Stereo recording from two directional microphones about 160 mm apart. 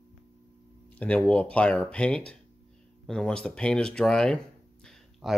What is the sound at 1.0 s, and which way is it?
Speech, 10° left (ahead or behind).